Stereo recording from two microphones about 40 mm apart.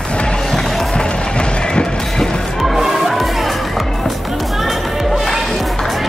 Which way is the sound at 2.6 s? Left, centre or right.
Centre.